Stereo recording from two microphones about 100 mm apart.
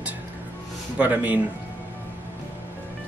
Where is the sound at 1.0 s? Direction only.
15° right (ahead or behind).